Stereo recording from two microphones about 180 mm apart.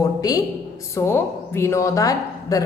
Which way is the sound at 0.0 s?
20° left (ahead or behind).